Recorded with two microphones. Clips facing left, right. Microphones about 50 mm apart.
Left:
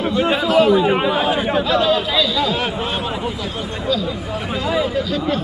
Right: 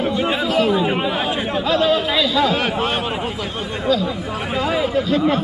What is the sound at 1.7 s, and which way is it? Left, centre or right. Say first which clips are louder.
Chatter: right 3 dB; right.